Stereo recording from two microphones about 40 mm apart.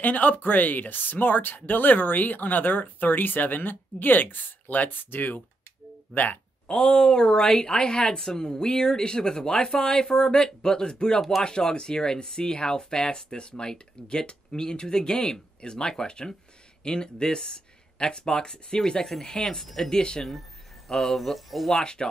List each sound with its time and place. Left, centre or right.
0.0 s speech: left
6.7 s speech: left
20.0 s speech: centre
20.9 s speech: centre
21.7 s speech: centre